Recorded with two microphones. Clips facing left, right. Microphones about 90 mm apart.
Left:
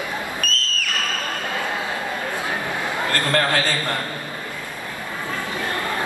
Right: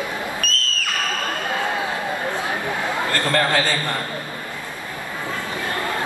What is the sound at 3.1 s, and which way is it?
Speech, 20° right (ahead or behind).